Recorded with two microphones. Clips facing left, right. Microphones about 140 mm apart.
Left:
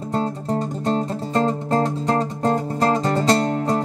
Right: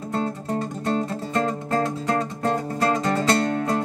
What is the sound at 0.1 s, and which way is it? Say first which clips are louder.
Music: left 3 dB; 30° left (ahead or behind).